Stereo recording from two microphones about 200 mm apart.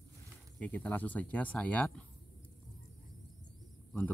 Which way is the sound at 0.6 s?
5° left (ahead or behind).